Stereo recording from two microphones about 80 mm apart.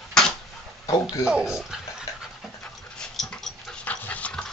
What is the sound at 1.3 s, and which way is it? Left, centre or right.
Dog, centre.